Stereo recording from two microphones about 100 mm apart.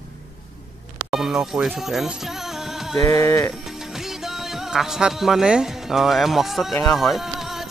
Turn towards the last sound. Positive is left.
turn(degrees=-5)  # may be behind; listen again after turning